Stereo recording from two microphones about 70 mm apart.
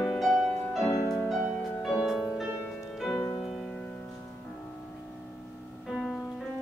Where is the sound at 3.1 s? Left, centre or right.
Left.